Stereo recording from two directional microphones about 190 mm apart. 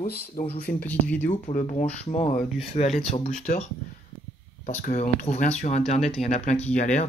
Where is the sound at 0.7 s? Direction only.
10° left (ahead or behind).